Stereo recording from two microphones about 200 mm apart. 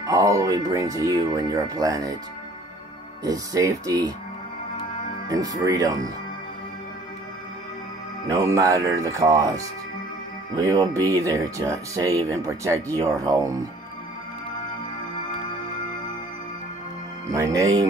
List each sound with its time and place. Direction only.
0.0 s speech: 15° right (ahead or behind)
3.3 s speech: 15° right (ahead or behind)
5.3 s speech: 20° right (ahead or behind)
8.3 s speech: 15° right (ahead or behind)
17.3 s speech: 15° right (ahead or behind)